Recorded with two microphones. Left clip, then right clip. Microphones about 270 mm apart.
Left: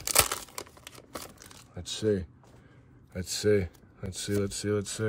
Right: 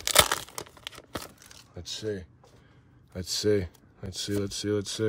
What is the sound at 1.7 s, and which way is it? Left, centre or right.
Speech, centre.